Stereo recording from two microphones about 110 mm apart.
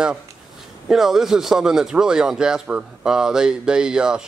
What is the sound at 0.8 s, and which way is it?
Speech, 5° right (ahead or behind).